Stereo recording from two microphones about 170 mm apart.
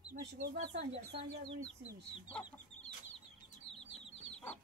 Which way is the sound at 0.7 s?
35° right (ahead or behind).